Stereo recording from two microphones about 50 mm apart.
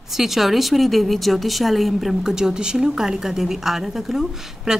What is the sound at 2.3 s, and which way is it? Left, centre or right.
A woman's voice, centre.